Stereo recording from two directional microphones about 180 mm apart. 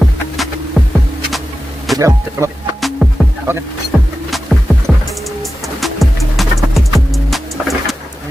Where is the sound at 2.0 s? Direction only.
15° right (ahead or behind).